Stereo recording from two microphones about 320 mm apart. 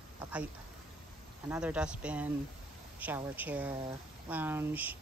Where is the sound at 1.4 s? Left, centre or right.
Centre.